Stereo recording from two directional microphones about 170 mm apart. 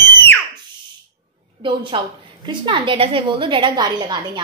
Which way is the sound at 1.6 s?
30° right (ahead or behind).